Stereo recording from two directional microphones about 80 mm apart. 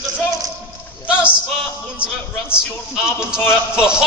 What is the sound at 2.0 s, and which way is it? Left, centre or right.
A man's voice, centre.